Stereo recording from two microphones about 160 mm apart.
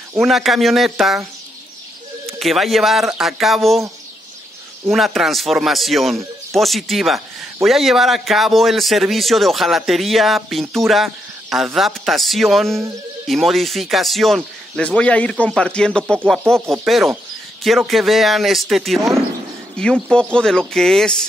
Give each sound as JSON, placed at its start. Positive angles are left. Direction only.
{"t": 0.2, "sound": "a man's voice", "side_deg": 0}
{"t": 2.2, "sound": "a man's voice", "side_deg": 0}
{"t": 4.8, "sound": "a man's voice", "side_deg": 0}
{"t": 16.5, "sound": "speech", "side_deg": -15}
{"t": 16.8, "sound": "a man's voice", "side_deg": 0}